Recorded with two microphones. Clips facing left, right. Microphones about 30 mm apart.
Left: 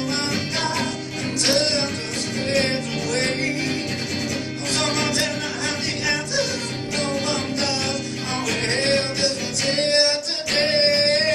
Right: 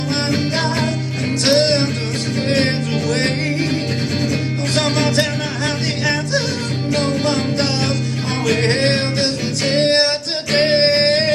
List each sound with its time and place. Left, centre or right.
1.4 s music: right
6.9 s music: right
8.5 s music: right